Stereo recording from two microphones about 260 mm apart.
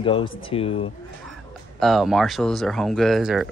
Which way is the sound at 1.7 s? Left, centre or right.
Centre.